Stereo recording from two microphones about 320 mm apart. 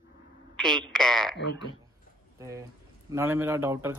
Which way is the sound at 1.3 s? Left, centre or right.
Left.